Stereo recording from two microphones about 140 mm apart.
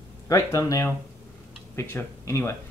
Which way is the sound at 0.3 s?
25° left (ahead or behind).